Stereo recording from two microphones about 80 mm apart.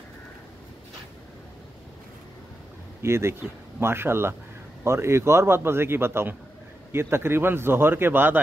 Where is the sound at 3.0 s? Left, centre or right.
Right.